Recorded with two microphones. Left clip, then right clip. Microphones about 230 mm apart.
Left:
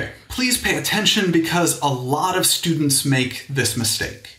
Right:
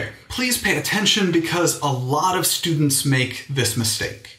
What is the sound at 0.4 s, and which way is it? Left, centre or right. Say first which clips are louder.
Speech: left 1 dB; left.